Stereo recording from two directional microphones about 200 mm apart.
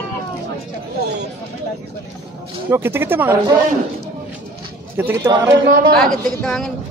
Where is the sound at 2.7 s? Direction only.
10° right (ahead or behind).